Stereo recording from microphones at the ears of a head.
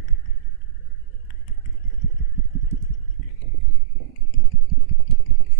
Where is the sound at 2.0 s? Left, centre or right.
Right.